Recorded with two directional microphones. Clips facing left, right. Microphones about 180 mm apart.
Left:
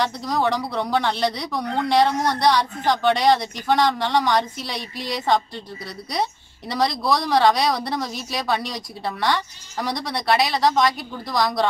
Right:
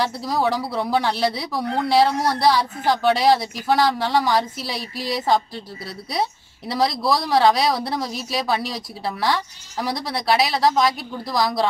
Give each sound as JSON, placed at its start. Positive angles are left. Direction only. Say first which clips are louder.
{"t": 0.0, "sound": "speech", "louder": "even", "side_deg": -5}
{"t": 6.7, "sound": "speech", "louder": "right 1 dB", "side_deg": 0}